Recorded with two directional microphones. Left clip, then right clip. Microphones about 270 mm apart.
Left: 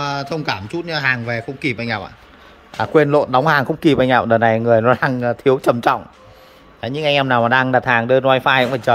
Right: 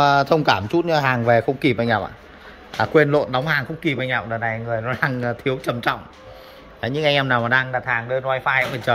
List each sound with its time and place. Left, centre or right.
0.0 s speech: centre; by 4.9 s left
4.9 s speech: centre
7.7 s speech: left
8.9 s speech: centre